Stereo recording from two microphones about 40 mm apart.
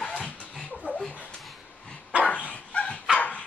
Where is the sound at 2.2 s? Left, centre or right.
Left.